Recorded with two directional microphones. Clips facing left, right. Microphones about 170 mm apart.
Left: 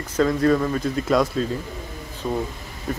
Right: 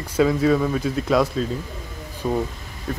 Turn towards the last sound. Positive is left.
turn(degrees=5)  # may be behind; listen again after turning